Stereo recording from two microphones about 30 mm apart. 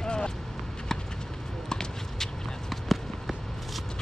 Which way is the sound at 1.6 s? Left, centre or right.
Left.